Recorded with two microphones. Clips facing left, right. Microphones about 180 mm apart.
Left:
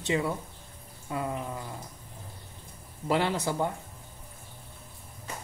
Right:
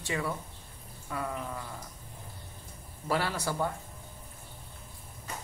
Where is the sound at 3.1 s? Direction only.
20° left (ahead or behind).